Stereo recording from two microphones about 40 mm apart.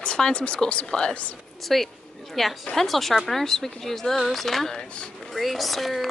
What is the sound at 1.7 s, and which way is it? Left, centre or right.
Speech, centre.